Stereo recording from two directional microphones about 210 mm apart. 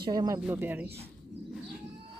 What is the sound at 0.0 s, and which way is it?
Speech, 20° right (ahead or behind).